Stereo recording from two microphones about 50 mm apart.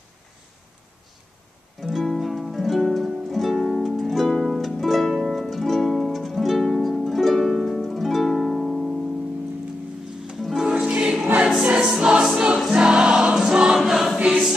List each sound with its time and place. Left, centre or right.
1.8 s music: centre
2.8 s harp: centre
4.3 s music: centre
10.6 s music: centre
11.6 s choir: centre
12.4 s music: centre
13.7 s choir: centre
14.1 s choir: centre